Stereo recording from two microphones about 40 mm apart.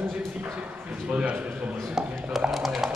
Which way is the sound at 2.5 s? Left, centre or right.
Centre.